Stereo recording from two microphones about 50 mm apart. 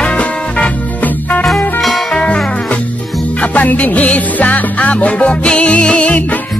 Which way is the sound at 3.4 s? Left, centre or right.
Left.